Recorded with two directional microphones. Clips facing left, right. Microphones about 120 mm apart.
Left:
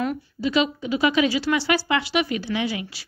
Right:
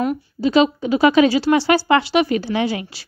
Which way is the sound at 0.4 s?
35° right (ahead or behind).